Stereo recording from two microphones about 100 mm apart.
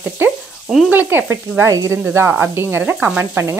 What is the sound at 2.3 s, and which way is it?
Speech, 20° right (ahead or behind).